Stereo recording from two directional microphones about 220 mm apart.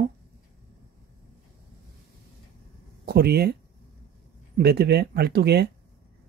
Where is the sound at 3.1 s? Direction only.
45° right (ahead or behind).